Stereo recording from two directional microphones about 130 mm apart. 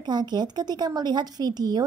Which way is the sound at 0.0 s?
35° right (ahead or behind).